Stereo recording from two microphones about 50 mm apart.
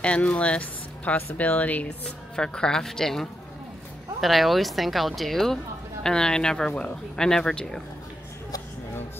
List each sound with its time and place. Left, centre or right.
0.0 s speech: left
2.0 s speech: centre